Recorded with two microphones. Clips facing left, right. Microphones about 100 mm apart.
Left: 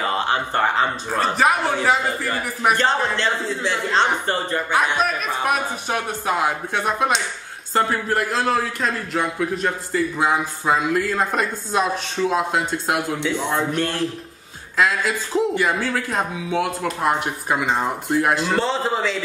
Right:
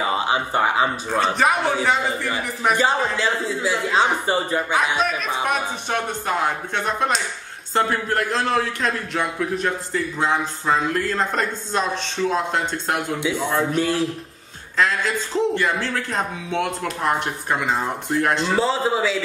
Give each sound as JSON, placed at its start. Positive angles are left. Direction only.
{"t": 0.0, "sound": "speech", "side_deg": -10}
{"t": 1.2, "sound": "a man's voice", "side_deg": 0}
{"t": 4.9, "sound": "a man's voice", "side_deg": 5}
{"t": 13.2, "sound": "a man's voice", "side_deg": -5}
{"t": 14.8, "sound": "a man's voice", "side_deg": 5}